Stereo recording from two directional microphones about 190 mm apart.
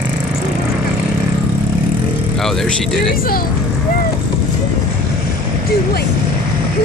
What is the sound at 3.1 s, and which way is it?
Speech, 50° left (ahead or behind).